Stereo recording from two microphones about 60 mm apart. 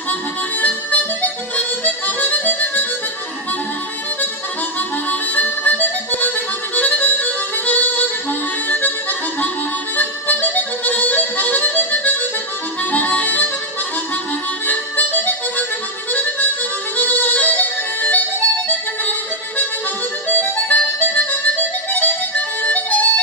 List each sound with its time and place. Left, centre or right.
0.6 s harmonica: left
5.3 s music: left
9.9 s harmonica: left
14.7 s harmonica: left
16.9 s music: left
20.2 s harmonica: left